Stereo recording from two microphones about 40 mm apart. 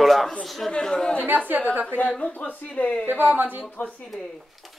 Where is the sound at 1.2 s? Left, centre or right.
Right.